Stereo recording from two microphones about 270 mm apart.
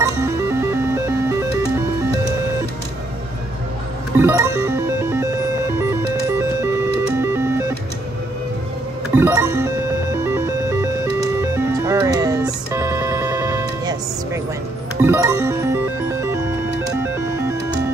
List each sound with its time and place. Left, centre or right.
0.0 s music: centre
4.2 s music: centre
9.1 s music: centre